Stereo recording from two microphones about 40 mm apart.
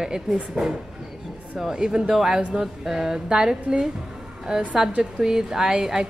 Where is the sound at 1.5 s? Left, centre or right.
Centre.